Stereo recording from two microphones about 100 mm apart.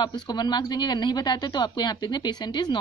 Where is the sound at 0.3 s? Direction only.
45° left (ahead or behind).